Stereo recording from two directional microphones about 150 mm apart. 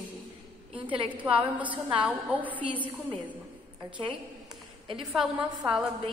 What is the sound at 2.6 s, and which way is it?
Speech, 35° right (ahead or behind).